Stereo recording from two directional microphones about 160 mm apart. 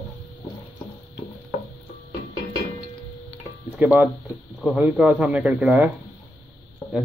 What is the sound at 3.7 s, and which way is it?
Speech, 10° right (ahead or behind).